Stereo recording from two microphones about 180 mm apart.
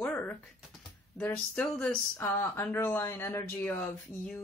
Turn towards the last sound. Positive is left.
turn(degrees=5)  # may be behind; listen again after turning